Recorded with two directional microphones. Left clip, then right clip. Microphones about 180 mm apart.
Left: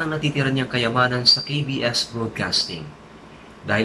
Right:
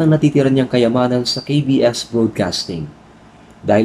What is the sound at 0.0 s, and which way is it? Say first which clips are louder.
A man's voice: right 9 dB; 40° right (ahead or behind).